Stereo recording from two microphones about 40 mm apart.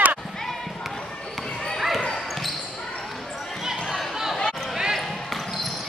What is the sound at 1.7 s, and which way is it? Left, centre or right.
Basketball bounce, centre.